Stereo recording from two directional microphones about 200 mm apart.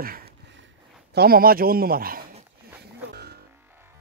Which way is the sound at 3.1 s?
55° right (ahead or behind).